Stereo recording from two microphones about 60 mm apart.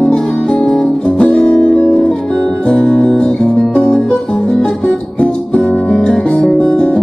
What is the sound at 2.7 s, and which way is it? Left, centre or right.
Music, centre.